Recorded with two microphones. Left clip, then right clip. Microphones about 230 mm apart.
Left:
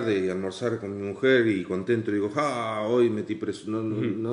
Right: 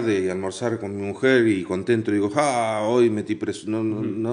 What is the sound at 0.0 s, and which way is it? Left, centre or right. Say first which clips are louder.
A man's voice: right 3 dB; right.